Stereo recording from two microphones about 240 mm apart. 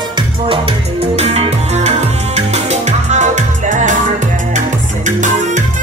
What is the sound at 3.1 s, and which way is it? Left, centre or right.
Music, right.